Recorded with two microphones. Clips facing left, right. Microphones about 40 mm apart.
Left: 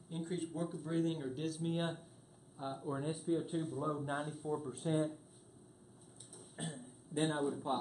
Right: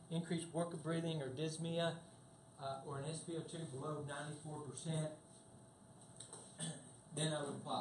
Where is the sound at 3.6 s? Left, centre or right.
Centre.